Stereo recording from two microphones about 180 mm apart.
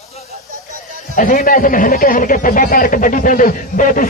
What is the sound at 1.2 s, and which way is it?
Speech, 50° left (ahead or behind).